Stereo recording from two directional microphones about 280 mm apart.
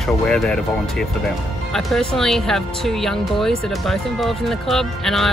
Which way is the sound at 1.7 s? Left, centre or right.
Centre.